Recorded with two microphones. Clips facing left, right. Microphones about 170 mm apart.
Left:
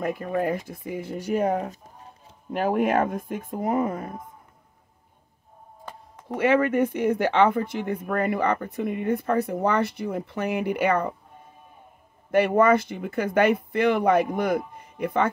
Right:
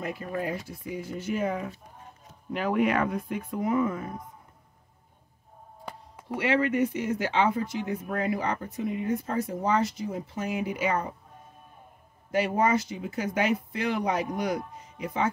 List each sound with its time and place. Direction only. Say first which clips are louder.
0.0 s speech: left 6 dB; 50° left (ahead or behind)
6.2 s speech: left 5 dB; 50° left (ahead or behind)
12.3 s speech: left 6 dB; 60° left (ahead or behind)
14.7 s music: left 7 dB; 55° left (ahead or behind)